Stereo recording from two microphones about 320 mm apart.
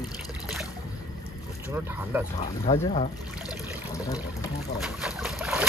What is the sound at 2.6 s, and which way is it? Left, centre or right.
Speech, centre.